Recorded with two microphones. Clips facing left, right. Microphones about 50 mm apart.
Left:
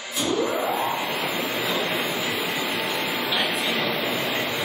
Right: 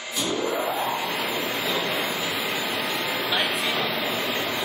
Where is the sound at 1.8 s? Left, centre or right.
Left.